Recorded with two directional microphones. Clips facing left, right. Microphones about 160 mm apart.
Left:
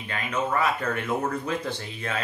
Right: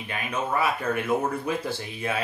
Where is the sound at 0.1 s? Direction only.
10° right (ahead or behind).